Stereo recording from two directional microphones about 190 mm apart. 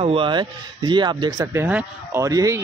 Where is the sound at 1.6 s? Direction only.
10° right (ahead or behind).